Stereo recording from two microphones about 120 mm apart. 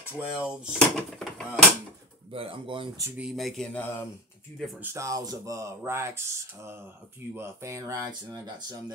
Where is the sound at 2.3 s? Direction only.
45° right (ahead or behind).